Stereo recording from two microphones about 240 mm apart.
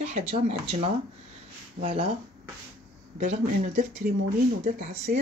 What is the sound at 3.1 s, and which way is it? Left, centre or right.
Speech, right.